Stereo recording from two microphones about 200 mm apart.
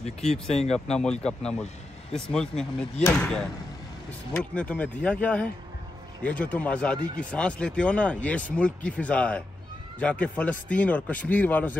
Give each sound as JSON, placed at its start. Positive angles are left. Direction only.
{"t": 0.9, "sound": "speech", "side_deg": 5}